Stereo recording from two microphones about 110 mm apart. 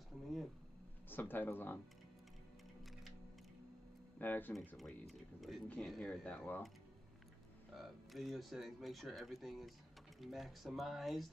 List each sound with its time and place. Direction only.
1.0 s speech: 20° left (ahead or behind)
4.2 s speech: 15° left (ahead or behind)
4.7 s speech: centre (ahead or behind)
7.7 s speech: centre (ahead or behind)